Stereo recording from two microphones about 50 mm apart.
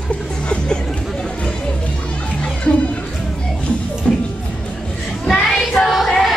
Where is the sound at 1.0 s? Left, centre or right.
Centre.